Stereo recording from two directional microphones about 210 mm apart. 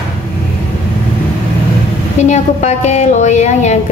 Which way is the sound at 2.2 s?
35° left (ahead or behind).